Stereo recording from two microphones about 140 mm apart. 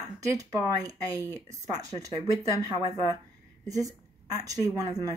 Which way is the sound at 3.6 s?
25° right (ahead or behind).